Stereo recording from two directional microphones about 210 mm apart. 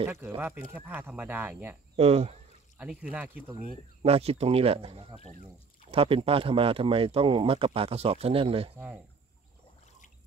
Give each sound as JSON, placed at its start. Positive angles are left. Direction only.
{"t": 0.0, "sound": "speech", "side_deg": -10}
{"t": 2.0, "sound": "speech", "side_deg": -30}
{"t": 2.8, "sound": "speech", "side_deg": -5}
{"t": 4.0, "sound": "speech", "side_deg": -30}
{"t": 8.7, "sound": "speech", "side_deg": -10}